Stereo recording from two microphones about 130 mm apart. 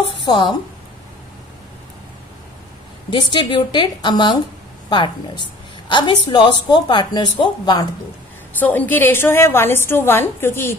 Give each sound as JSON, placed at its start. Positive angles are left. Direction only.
{"t": 0.3, "sound": "a woman's voice", "side_deg": 35}
{"t": 3.1, "sound": "a woman's voice", "side_deg": 35}
{"t": 8.5, "sound": "a woman's voice", "side_deg": 10}